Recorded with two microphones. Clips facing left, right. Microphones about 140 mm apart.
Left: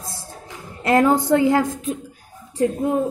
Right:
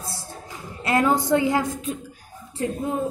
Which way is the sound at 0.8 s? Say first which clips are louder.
Left 4 dB; 45° left (ahead or behind).